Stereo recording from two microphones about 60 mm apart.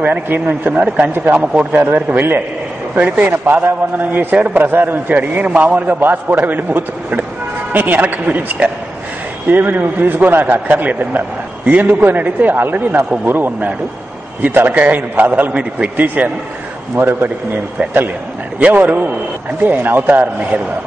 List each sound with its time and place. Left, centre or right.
0.5 s a man's voice: right
3.0 s a man's voice: right
16.9 s a man's voice: right
18.7 s a man's voice: right